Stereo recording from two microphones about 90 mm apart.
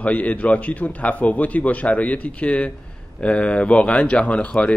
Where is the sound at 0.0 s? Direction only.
15° left (ahead or behind).